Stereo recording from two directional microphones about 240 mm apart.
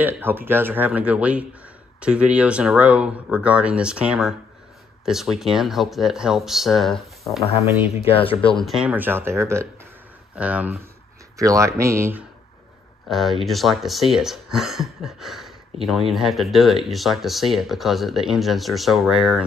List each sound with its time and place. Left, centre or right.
0.0 s speech: centre
8.1 s speech: left
8.5 s speech: centre